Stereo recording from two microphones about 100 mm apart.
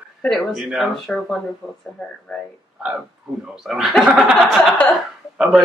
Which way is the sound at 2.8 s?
5° right (ahead or behind).